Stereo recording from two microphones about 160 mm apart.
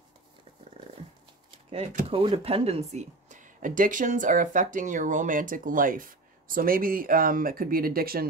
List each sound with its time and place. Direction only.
2.0 s speech: 35° right (ahead or behind); by 8.3 s 70° right (ahead or behind)